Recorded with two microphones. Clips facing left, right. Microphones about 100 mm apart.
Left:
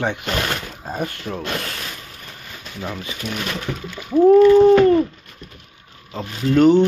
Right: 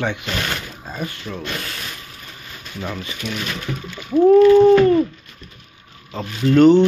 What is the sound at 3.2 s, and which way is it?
Speech, 45° left (ahead or behind).